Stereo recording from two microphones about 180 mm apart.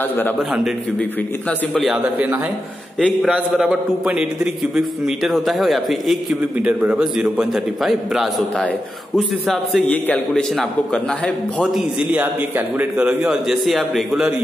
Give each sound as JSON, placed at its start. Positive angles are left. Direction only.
{"t": 1.7, "sound": "a man's voice", "side_deg": 0}